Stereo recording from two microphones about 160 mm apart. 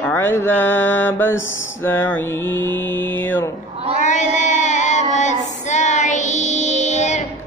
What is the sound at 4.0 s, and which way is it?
Female singing, 50° left (ahead or behind).